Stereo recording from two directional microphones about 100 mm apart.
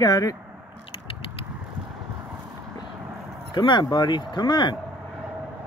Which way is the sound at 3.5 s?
50° left (ahead or behind).